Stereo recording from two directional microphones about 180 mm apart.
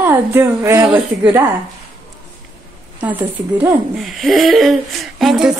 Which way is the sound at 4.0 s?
Centre (ahead or behind).